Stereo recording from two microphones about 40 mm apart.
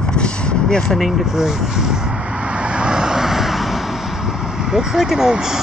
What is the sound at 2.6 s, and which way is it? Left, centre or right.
Vehicle, right.